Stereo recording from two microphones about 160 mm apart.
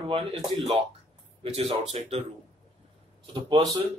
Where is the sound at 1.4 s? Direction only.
35° right (ahead or behind).